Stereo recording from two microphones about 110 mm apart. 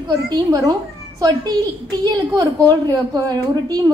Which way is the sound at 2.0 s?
35° right (ahead or behind).